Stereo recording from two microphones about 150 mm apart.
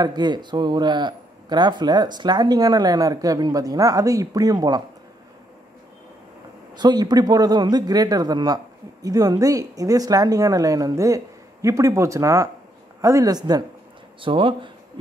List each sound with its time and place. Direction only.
0.0 s a man's voice: 30° right (ahead or behind)
6.7 s a man's voice: 30° right (ahead or behind)